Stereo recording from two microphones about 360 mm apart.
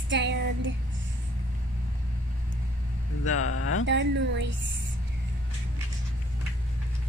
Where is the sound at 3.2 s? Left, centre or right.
Left.